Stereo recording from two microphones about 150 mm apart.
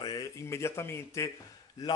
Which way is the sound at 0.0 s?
25° left (ahead or behind).